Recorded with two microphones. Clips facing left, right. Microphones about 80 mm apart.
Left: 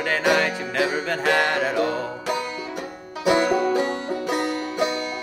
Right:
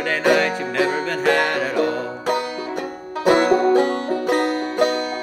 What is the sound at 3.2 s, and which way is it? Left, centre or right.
Music, right.